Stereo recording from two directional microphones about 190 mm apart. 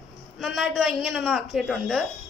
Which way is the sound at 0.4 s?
Centre (ahead or behind).